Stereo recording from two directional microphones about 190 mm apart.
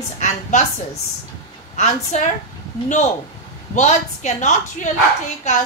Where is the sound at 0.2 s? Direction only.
40° left (ahead or behind).